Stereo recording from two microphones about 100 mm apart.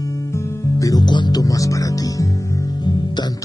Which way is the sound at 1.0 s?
50° left (ahead or behind).